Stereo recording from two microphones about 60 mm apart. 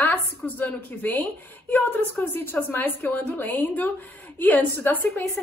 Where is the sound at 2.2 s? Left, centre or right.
Left.